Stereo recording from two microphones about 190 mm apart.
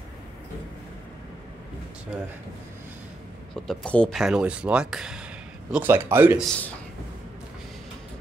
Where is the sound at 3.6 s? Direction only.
5° left (ahead or behind).